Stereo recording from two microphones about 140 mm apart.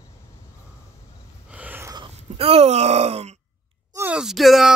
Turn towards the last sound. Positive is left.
turn(degrees=0)  # may be behind; listen again after turning